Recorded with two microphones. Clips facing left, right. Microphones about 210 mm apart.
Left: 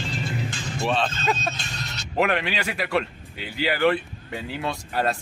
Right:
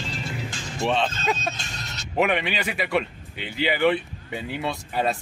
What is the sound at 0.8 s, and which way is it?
Music, 20° right (ahead or behind).